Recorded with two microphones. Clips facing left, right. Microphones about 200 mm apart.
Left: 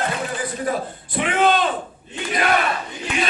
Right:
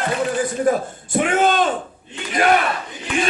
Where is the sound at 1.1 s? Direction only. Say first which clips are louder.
Right 3 dB; 45° right (ahead or behind).